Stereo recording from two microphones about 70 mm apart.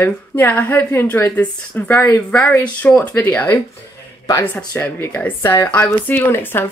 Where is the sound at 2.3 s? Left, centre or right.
Centre.